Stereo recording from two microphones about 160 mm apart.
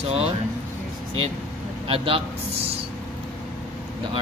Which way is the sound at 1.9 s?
35° right (ahead or behind).